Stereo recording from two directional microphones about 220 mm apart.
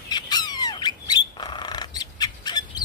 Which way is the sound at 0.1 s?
20° left (ahead or behind).